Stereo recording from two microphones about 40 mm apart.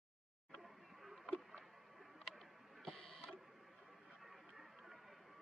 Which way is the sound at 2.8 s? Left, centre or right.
Centre.